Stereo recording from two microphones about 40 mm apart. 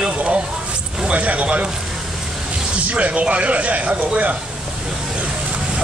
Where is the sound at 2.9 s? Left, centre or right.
Right.